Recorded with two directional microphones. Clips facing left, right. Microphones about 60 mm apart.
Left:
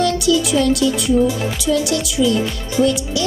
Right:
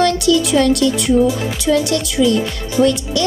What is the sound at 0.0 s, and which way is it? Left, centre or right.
Speech, right.